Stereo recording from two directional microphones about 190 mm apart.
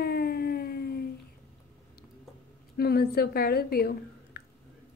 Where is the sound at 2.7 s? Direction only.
55° left (ahead or behind).